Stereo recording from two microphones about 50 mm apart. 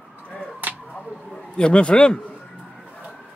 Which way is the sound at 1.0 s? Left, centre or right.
Centre.